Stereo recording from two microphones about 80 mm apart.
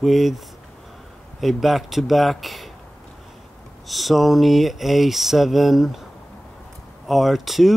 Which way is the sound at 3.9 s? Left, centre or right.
Centre.